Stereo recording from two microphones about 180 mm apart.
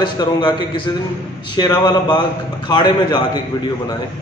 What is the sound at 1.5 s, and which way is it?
A man's voice, 20° left (ahead or behind).